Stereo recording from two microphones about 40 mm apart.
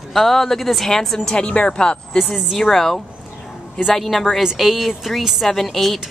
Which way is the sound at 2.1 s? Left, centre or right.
Centre.